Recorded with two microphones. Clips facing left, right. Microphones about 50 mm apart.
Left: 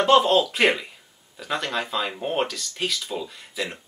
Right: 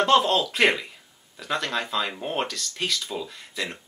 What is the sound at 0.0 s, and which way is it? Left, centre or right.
Speech, centre.